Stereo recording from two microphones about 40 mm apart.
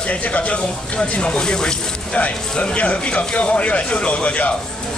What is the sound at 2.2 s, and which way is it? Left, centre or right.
Speech, left.